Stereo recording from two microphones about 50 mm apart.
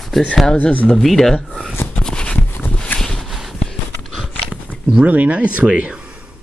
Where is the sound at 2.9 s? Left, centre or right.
Centre.